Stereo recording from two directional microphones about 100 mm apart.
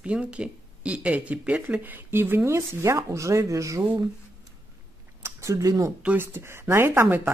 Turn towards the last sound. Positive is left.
turn(degrees=-20)  # may be behind; listen again after turning